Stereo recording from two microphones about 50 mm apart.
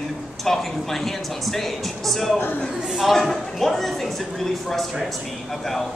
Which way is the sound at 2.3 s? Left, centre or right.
Left.